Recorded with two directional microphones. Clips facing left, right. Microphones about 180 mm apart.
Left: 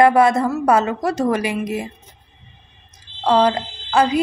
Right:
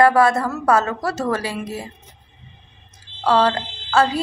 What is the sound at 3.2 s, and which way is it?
A woman's voice, 15° left (ahead or behind).